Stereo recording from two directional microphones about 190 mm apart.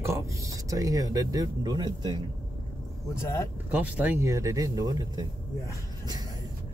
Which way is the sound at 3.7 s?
10° right (ahead or behind).